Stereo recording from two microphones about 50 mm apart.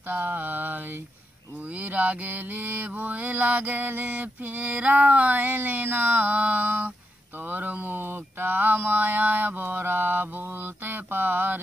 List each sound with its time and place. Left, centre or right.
0.1 s mantra: right